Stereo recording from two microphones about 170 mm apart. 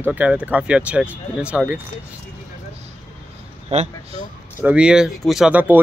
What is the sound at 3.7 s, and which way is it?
Speech, 40° right (ahead or behind).